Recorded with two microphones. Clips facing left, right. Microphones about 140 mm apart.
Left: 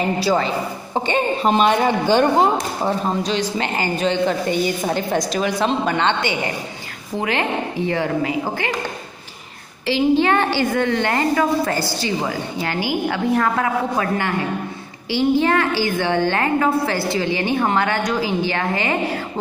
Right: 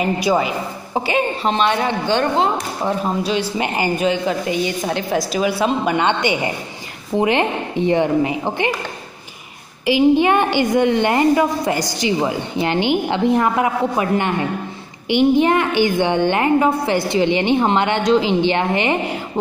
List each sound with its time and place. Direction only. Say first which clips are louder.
0.2 s a woman's voice: right 1 dB; 15° right (ahead or behind); by 3.0 s 5° left (ahead or behind)
3.5 s a woman's voice: right 2 dB; 15° right (ahead or behind)
9.8 s a woman's voice: right 3 dB; 15° right (ahead or behind)